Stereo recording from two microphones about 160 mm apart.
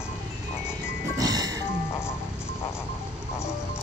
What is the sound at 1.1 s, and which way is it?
Music, 25° right (ahead or behind).